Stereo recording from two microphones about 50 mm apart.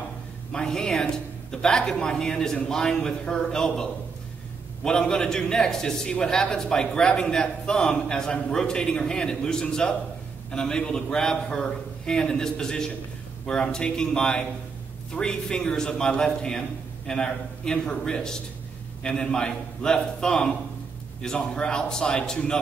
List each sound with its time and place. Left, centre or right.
0.5 s a man's voice: centre